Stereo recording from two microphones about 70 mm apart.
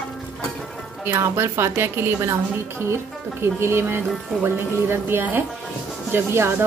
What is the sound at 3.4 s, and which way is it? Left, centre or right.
Speech, right.